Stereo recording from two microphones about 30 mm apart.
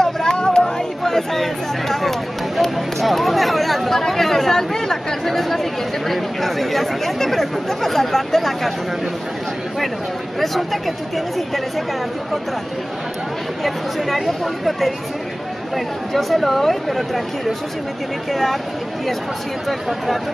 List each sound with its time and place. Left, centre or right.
0.0 s a sound: centre
0.6 s speech: centre
10.4 s speech: centre
13.7 s speech: centre
16.1 s speech: centre